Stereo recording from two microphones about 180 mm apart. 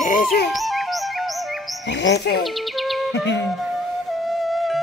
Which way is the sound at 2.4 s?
Centre (ahead or behind).